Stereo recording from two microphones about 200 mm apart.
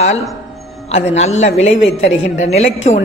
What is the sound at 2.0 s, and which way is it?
Speech, 70° left (ahead or behind).